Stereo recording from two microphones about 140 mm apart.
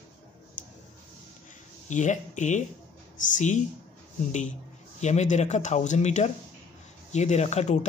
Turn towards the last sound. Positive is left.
turn(degrees=55)  # may be behind; listen again after turning